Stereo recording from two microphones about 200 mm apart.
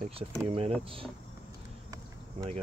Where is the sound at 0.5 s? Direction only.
30° right (ahead or behind).